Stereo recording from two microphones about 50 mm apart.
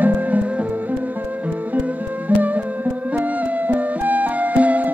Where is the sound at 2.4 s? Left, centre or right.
Right.